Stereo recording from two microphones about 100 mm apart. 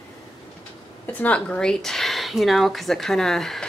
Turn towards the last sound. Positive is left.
turn(degrees=5)  # may be behind; listen again after turning